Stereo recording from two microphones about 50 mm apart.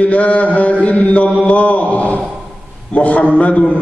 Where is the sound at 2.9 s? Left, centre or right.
Left.